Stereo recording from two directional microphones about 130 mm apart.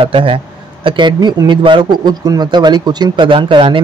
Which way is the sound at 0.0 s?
45° right (ahead or behind).